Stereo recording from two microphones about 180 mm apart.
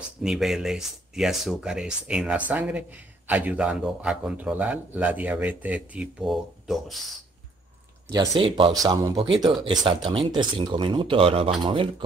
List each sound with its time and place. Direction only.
0.2 s speech: centre (ahead or behind)
8.1 s speech: 20° right (ahead or behind)